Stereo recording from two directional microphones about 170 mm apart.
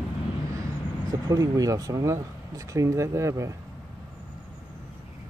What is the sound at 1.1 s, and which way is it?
Speech, 20° right (ahead or behind).